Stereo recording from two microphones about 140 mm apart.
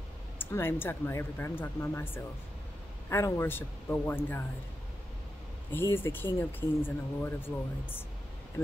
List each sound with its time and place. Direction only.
0.4 s speech: 15° left (ahead or behind)
5.7 s speech: 15° left (ahead or behind)